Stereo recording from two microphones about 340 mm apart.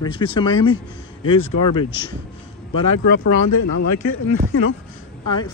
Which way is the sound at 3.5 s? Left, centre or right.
Left.